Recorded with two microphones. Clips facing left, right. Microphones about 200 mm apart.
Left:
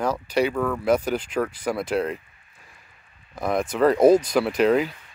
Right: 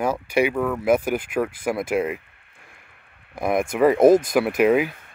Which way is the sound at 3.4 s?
15° right (ahead or behind).